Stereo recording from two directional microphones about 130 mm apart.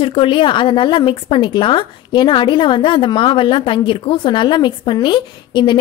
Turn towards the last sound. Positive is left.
turn(degrees=35)  # may be behind; listen again after turning